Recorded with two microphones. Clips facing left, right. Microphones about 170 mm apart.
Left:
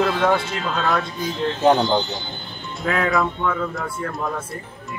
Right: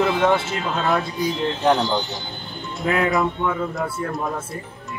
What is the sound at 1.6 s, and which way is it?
Speech, 25° left (ahead or behind).